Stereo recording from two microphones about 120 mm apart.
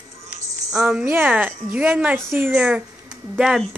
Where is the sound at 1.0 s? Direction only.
15° right (ahead or behind).